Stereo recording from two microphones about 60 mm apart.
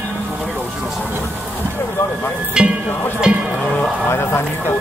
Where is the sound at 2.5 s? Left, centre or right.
Centre.